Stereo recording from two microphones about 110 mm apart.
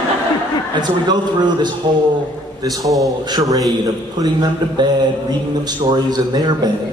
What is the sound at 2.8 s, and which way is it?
Speech, centre (ahead or behind).